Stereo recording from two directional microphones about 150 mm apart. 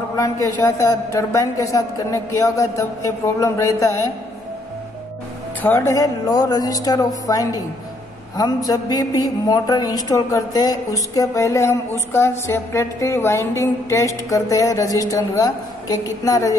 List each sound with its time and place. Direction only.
0.1 s a woman's voice: 20° left (ahead or behind)
5.6 s a woman's voice: 15° left (ahead or behind)